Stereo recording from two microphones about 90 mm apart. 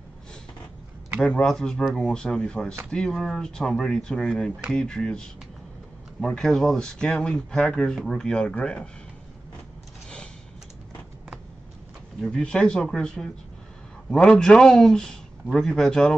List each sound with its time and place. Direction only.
1.2 s speech: 5° left (ahead or behind)
6.2 s speech: 5° left (ahead or behind)
10.0 s creak: 10° left (ahead or behind)
12.2 s speech: 5° left (ahead or behind)
14.3 s speech: 5° left (ahead or behind)